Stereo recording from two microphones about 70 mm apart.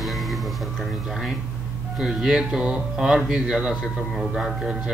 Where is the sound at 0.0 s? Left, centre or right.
Centre.